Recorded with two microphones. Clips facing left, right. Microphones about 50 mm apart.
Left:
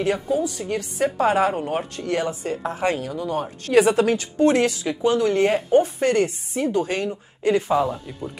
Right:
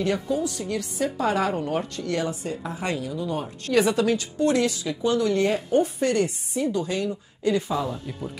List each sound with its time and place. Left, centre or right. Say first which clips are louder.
0.0 s a woman's voice: left 3 dB; left
0.9 s a woman's voice: left 5 dB; left
3.0 s speech: left 3 dB; left
3.7 s a woman's voice: left 4 dB; left